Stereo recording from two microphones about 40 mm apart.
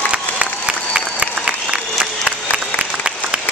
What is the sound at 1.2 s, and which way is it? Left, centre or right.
Applause, right.